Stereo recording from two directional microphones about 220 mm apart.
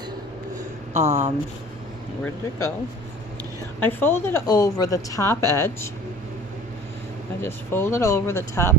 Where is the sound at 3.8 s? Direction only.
10° left (ahead or behind).